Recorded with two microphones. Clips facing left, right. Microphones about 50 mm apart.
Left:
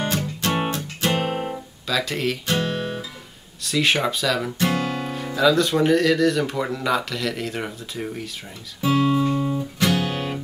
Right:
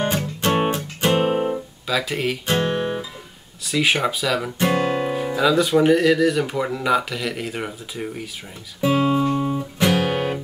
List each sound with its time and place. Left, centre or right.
0.0 s music: right
1.4 s music: centre
2.4 s guitar: right
3.6 s speech: centre
4.7 s music: right
5.1 s speech: centre
8.8 s music: centre